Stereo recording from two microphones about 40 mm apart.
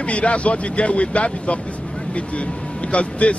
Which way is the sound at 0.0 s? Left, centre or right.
Left.